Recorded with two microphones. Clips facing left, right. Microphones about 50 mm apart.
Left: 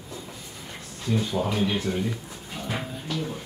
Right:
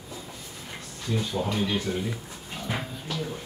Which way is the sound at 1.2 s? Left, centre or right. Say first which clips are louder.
Left 2 dB; centre.